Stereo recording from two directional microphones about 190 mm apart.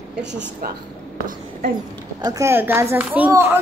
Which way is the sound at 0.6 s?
50° right (ahead or behind).